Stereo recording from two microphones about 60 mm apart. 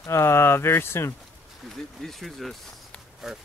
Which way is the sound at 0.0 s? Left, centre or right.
Left.